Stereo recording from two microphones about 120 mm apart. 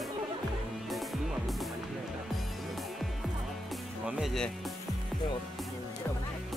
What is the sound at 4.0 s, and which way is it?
Speech, 5° right (ahead or behind).